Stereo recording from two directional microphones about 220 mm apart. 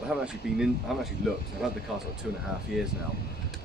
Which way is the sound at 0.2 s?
Centre (ahead or behind).